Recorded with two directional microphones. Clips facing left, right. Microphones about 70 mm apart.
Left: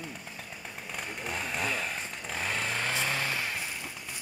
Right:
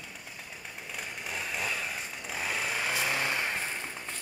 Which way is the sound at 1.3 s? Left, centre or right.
Centre.